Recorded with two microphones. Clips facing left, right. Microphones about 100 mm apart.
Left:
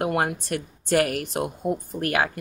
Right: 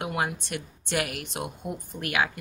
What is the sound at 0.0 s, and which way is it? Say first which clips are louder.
A woman's voice: left 5 dB; 45° left (ahead or behind).